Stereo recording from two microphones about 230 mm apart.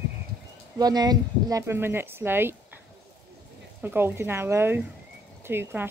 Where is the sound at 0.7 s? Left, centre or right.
Centre.